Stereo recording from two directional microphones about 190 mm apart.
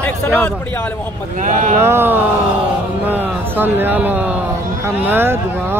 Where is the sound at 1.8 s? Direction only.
10° right (ahead or behind).